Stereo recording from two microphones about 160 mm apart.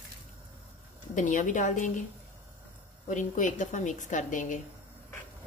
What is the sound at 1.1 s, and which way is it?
Speech, 50° left (ahead or behind).